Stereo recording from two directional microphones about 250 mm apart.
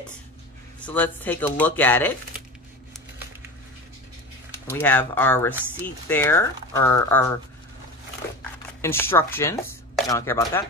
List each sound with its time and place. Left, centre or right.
0.8 s speech: centre
4.6 s speech: centre
8.8 s speech: centre